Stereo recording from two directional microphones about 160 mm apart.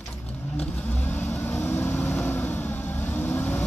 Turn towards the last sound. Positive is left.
turn(degrees=10)  # may be behind; listen again after turning